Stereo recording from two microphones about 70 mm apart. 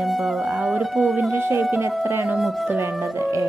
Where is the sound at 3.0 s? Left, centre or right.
Right.